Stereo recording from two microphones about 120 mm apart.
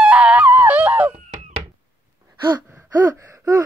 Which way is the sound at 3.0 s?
25° right (ahead or behind).